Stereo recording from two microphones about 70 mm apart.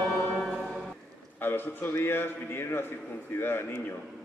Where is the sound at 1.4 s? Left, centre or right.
Left.